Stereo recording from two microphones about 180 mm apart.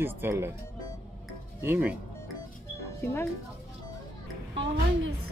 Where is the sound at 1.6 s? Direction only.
10° right (ahead or behind).